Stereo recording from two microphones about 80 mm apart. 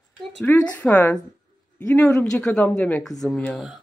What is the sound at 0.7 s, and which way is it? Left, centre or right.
Speech, centre.